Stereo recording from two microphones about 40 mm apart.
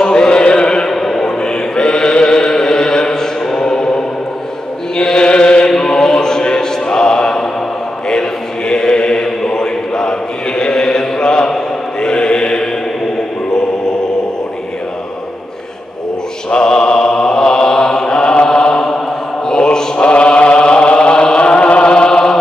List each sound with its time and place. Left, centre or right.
0.0 s chant: left
0.8 s a sound: centre
4.9 s chant: centre
5.7 s a sound: centre
8.1 s chant: centre
13.5 s music: centre
16.4 s mantra: left
20.0 s chant: left